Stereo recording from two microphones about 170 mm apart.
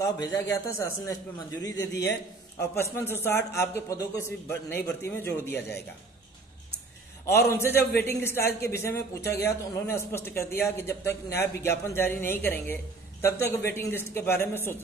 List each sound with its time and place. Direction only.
0.0 s speech: 20° left (ahead or behind)
2.7 s a man's voice: 15° left (ahead or behind)
7.2 s a man's voice: 15° left (ahead or behind)